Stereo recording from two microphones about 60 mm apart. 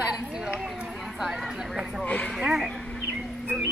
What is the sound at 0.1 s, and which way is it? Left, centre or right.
Chatter, centre.